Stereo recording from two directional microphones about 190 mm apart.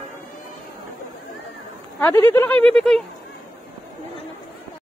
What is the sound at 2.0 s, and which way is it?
Speech, 10° left (ahead or behind).